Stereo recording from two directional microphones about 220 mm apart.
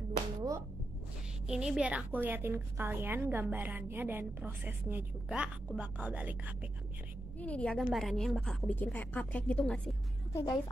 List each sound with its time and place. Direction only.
0.4 s finger snapping: 15° right (ahead or behind)
1.5 s a woman's voice: 5° right (ahead or behind)
7.3 s a woman's voice: 5° left (ahead or behind)